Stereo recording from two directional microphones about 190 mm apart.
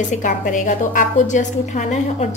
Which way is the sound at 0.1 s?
45° left (ahead or behind).